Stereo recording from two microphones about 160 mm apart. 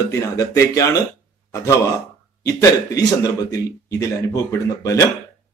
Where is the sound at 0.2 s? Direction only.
20° left (ahead or behind).